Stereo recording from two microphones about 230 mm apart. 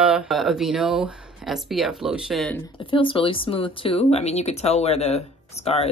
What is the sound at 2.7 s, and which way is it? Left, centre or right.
Speech, left.